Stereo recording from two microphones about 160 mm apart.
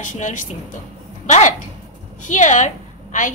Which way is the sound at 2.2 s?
50° left (ahead or behind).